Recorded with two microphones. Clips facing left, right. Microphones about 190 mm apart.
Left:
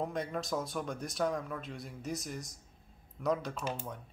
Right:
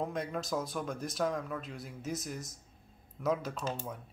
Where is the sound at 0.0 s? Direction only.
Centre (ahead or behind).